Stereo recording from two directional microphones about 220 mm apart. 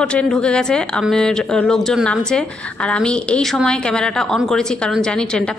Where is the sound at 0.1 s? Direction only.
5° left (ahead or behind).